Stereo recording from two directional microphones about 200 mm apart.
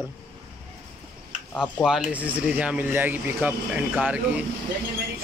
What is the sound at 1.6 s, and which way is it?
Speech, 5° right (ahead or behind).